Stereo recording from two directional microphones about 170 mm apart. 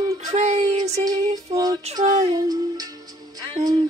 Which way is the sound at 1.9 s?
40° right (ahead or behind).